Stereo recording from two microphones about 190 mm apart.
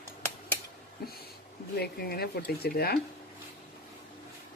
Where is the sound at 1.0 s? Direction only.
55° left (ahead or behind).